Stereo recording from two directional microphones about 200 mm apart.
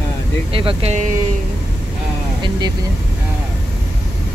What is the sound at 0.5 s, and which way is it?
Speech, 30° right (ahead or behind).